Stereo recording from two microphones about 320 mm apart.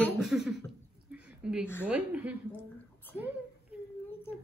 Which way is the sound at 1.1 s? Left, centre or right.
Centre.